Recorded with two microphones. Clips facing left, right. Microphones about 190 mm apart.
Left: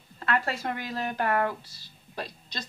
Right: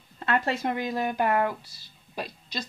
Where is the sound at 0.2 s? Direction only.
25° right (ahead or behind).